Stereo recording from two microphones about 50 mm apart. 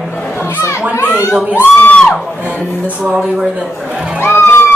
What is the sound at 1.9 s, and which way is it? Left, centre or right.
Speech, left.